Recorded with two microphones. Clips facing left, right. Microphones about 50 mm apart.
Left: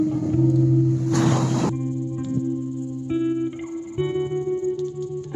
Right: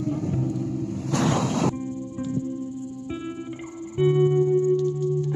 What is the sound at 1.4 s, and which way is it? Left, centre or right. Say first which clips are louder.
Music: left 1 dB; right.